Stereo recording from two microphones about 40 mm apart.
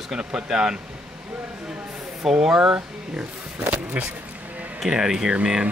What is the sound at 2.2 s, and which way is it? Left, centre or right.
Speech, centre.